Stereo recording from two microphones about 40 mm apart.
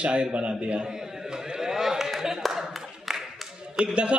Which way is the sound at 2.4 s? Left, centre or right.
Centre.